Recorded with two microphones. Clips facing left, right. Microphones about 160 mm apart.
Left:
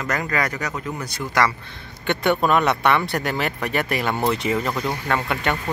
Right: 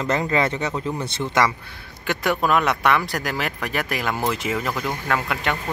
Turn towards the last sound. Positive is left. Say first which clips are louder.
# left 1 dB
turn(degrees=0)  # may be behind; listen again after turning